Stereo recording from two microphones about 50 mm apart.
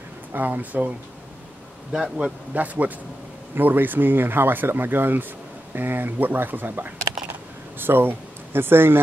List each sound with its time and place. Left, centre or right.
0.3 s speech: right
2.1 s speech: right